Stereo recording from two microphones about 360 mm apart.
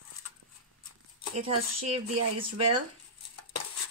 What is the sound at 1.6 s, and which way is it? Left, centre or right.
Speech, right.